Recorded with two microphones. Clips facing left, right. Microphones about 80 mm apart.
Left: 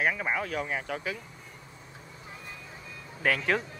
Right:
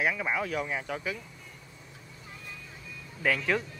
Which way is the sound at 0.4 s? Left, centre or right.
Left.